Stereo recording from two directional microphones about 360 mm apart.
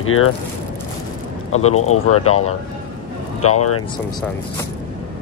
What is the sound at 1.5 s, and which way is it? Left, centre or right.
Speech, left.